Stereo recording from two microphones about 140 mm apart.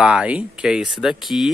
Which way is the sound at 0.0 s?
5° right (ahead or behind).